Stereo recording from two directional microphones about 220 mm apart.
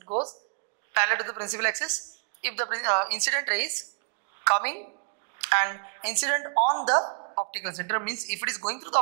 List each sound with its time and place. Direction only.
0.9 s a woman's voice: 15° right (ahead or behind)
8.0 s a woman's voice: 10° right (ahead or behind)